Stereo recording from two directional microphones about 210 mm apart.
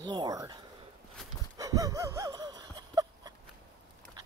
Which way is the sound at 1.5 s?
15° right (ahead or behind).